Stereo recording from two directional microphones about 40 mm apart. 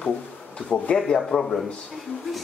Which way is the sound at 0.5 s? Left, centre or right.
Left.